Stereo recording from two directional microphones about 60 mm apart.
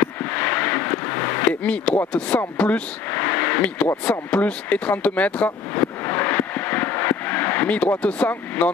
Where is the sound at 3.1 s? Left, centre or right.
Left.